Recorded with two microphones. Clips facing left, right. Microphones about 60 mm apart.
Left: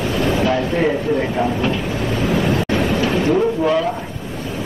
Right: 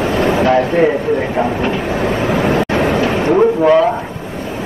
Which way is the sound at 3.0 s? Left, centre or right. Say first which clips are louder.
Right 3 dB; right.